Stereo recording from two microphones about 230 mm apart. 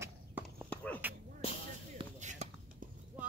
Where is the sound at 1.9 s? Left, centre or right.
Right.